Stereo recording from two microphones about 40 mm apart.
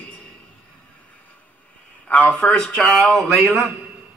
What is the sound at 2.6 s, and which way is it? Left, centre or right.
Speech, centre.